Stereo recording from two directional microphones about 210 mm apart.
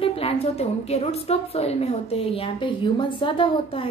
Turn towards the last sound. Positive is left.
turn(degrees=25)  # may be behind; listen again after turning